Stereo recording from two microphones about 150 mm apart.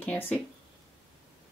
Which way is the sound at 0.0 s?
10° left (ahead or behind).